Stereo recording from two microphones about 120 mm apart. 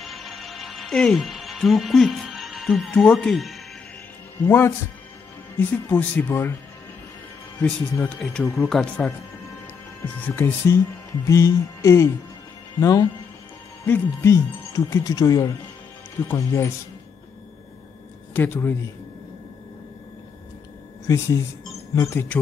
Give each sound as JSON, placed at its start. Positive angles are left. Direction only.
{"t": 0.0, "sound": "music", "side_deg": 0}
{"t": 4.5, "sound": "speech", "side_deg": 20}
{"t": 7.5, "sound": "speech", "side_deg": 15}
{"t": 10.0, "sound": "speech", "side_deg": 15}
{"t": 13.8, "sound": "speech", "side_deg": 15}
{"t": 18.3, "sound": "speech", "side_deg": 15}
{"t": 21.1, "sound": "speech", "side_deg": 25}